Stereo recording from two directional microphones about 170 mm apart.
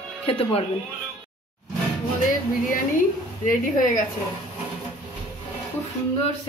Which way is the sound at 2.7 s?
55° left (ahead or behind).